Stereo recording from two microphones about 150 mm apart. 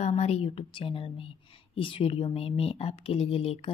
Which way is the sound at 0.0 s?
45° left (ahead or behind).